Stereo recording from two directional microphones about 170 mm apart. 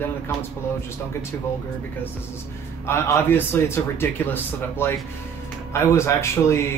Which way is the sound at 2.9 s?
15° left (ahead or behind).